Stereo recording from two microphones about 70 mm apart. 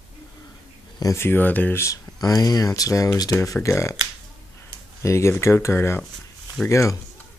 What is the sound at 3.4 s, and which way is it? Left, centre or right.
Speech, left.